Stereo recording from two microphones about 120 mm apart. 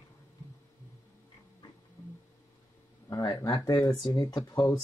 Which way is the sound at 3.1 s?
25° left (ahead or behind).